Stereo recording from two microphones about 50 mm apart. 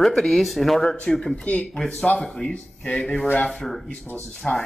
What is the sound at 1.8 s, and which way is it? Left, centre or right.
Speech, centre.